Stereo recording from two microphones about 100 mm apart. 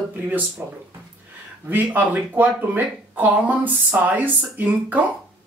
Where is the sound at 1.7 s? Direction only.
20° right (ahead or behind).